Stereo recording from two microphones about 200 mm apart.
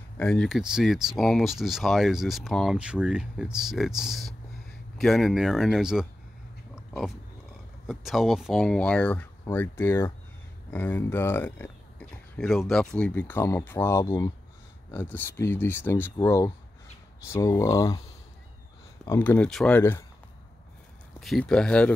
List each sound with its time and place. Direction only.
0.2 s speech: 5° left (ahead or behind)
7.8 s speech: centre (ahead or behind); by 18.0 s 15° left (ahead or behind)
19.0 s speech: 10° left (ahead or behind)
21.2 s speech: centre (ahead or behind)